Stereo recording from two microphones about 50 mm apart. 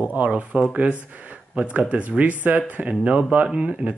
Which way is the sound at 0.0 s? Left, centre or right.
Right.